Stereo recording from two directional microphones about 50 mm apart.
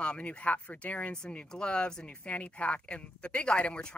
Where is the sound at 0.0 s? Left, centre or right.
Left.